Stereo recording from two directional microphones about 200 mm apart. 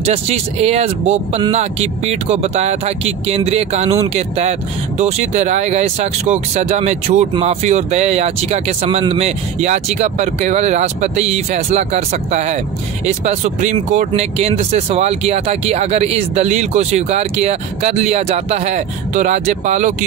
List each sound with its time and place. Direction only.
0.0 s speech: 30° right (ahead or behind)